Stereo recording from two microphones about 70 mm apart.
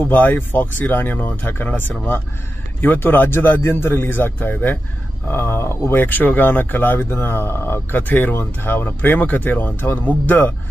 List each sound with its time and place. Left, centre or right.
0.0 s speech: left
5.3 s speech: left